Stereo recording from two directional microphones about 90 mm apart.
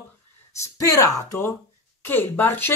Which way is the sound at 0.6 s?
40° left (ahead or behind).